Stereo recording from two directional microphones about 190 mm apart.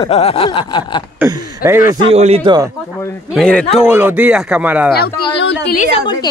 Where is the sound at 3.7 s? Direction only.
5° right (ahead or behind).